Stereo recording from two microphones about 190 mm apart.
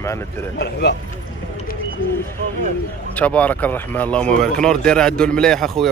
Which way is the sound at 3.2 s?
5° left (ahead or behind).